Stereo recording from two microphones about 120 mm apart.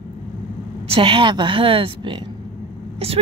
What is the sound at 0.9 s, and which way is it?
A woman's voice, 45° right (ahead or behind).